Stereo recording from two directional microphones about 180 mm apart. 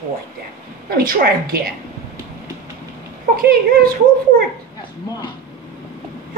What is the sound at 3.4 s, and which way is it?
Speech, 55° right (ahead or behind).